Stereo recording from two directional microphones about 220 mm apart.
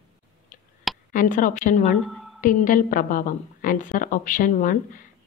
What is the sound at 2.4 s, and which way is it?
A woman's voice, 35° left (ahead or behind).